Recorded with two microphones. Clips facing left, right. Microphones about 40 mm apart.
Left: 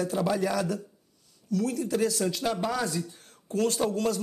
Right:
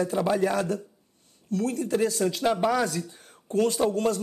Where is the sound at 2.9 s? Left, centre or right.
Right.